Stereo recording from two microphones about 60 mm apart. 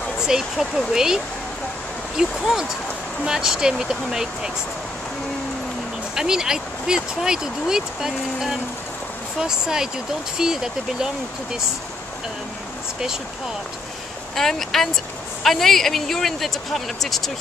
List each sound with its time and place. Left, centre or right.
0.2 s speech: centre
6.1 s speech: centre
14.3 s speech: centre